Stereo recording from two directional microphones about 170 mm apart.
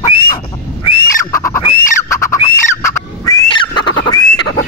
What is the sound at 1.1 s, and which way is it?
Fowl, 15° left (ahead or behind).